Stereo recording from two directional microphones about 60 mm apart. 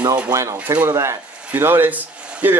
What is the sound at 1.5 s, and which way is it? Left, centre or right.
Speech, right.